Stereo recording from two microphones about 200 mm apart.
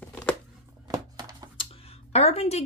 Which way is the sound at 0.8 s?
20° right (ahead or behind).